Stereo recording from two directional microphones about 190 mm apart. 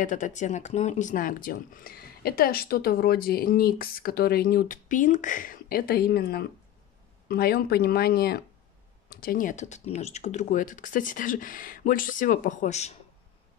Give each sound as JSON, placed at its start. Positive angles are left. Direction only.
{"t": 0.0, "sound": "speech", "side_deg": 40}